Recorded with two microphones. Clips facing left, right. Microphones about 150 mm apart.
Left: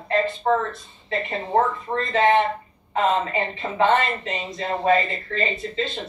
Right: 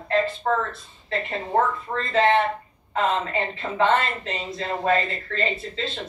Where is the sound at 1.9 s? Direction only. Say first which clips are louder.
Left 1 dB; centre (ahead or behind).